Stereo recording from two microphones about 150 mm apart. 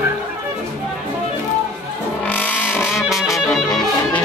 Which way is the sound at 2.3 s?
10° left (ahead or behind).